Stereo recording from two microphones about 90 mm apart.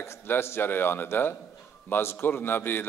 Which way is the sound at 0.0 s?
30° left (ahead or behind).